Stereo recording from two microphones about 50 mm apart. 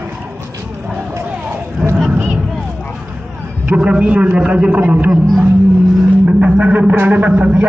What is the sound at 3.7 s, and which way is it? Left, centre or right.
A man's voice, right.